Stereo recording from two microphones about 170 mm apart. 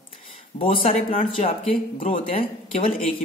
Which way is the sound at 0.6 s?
35° left (ahead or behind).